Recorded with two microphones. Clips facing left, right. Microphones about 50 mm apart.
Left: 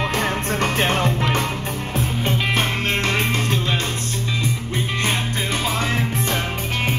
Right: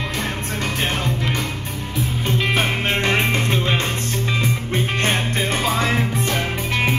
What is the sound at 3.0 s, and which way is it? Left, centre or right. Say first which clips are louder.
Music: right 2 dB; right.